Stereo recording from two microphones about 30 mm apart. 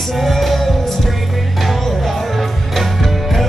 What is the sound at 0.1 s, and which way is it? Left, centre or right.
Music, centre.